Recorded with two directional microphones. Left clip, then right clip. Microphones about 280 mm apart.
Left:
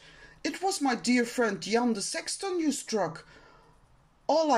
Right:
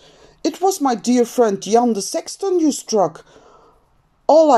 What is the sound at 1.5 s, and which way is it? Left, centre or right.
Speech, right.